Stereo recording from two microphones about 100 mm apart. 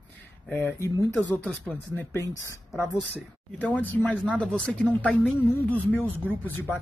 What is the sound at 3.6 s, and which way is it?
Speech, 15° left (ahead or behind).